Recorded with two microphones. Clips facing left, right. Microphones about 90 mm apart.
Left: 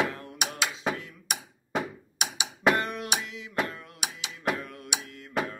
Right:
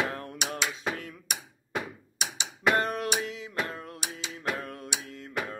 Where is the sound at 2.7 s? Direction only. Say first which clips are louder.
Right 2 dB; 40° right (ahead or behind).